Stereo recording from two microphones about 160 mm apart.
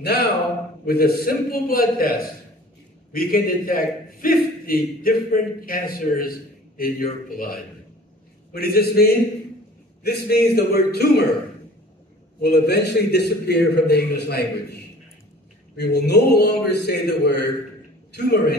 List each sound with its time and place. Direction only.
0.0 s a man's voice: 80° left
8.5 s a man's voice: 75° left (ahead or behind)
12.4 s a man's voice: 90° left